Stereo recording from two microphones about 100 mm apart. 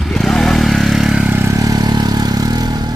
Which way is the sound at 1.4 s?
35° right (ahead or behind).